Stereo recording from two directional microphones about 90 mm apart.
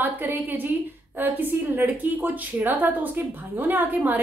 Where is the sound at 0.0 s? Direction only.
20° right (ahead or behind).